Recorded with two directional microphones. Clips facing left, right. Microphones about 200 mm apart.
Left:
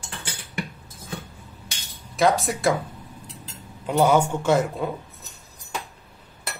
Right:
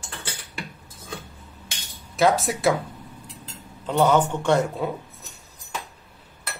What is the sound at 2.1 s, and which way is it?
Speech, centre (ahead or behind).